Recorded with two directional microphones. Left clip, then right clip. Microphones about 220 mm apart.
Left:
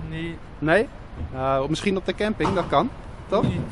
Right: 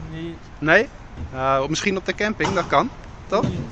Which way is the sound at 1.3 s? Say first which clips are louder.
Right 3 dB; 5° left (ahead or behind).